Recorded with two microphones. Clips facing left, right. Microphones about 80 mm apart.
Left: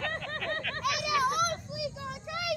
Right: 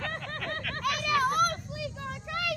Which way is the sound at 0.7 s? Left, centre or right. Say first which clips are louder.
Right 2 dB; right.